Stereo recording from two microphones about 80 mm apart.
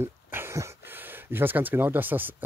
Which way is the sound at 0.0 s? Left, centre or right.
Right.